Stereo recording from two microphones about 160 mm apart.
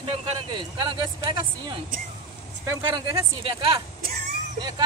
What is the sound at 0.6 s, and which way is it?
Speech, 30° right (ahead or behind).